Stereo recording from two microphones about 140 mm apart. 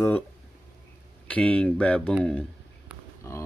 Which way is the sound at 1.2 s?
10° left (ahead or behind).